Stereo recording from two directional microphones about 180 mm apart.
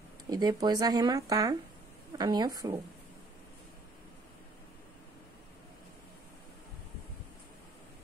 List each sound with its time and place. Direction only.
0.3 s speech: 20° right (ahead or behind)